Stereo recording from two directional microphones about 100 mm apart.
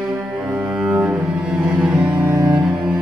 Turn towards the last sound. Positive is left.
turn(degrees=-10)  # may be behind; listen again after turning